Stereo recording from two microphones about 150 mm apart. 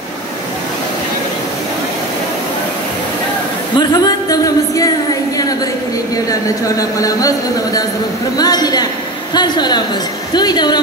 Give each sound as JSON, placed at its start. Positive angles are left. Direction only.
{"t": 3.7, "sound": "speech", "side_deg": 30}
{"t": 6.8, "sound": "speech", "side_deg": 25}